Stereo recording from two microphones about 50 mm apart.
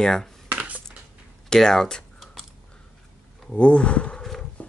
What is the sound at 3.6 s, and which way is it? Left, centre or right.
Speech, left.